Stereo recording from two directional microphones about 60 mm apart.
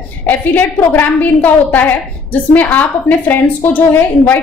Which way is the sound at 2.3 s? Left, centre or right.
Left.